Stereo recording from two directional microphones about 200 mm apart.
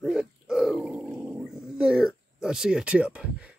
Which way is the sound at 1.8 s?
5° right (ahead or behind).